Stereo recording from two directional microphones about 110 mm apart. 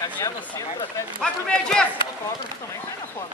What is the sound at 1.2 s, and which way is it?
Speech, 10° left (ahead or behind).